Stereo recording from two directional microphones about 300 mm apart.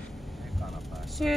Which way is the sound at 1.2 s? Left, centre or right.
Centre.